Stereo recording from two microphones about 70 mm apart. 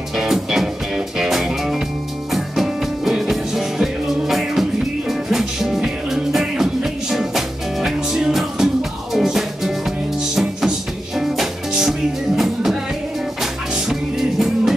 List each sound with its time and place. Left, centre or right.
0.1 s music: centre
13.4 s music: centre